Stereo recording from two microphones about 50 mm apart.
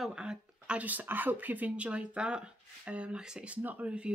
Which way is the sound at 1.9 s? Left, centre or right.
Centre.